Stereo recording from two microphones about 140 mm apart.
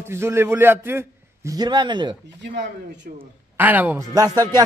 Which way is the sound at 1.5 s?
30° right (ahead or behind).